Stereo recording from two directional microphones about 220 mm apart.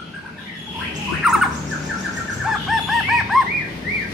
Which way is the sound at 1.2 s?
Centre (ahead or behind).